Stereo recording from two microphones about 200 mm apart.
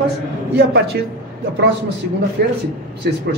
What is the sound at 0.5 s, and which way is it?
Speech, 55° right (ahead or behind).